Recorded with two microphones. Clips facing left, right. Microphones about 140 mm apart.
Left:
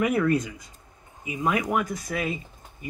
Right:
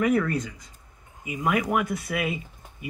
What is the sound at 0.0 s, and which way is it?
Speech, 20° left (ahead or behind).